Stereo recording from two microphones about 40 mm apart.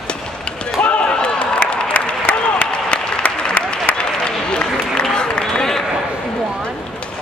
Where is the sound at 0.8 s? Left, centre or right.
Left.